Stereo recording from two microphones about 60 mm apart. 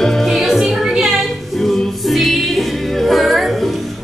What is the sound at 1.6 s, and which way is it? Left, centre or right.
Music, centre.